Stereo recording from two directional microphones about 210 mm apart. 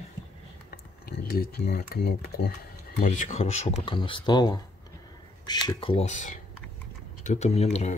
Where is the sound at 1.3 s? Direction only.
45° left (ahead or behind).